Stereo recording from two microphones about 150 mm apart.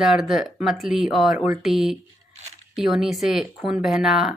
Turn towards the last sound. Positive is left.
turn(degrees=-5)  # may be behind; listen again after turning